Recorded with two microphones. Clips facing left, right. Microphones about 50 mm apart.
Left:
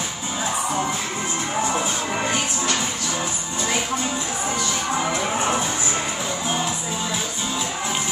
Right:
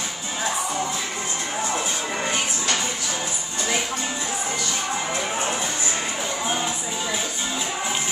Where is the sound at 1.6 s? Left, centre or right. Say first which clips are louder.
Left 3 dB; left.